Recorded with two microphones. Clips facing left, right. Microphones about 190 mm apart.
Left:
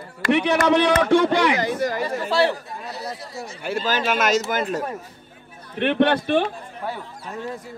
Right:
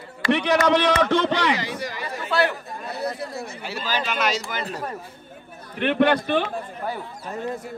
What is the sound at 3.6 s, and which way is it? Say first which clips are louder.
Speech: left 6 dB; 50° left (ahead or behind).